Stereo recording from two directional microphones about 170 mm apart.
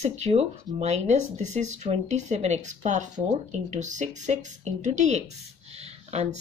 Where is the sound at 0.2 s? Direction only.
40° right (ahead or behind).